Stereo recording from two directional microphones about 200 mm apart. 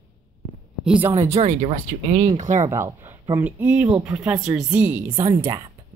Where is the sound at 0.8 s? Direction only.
10° right (ahead or behind).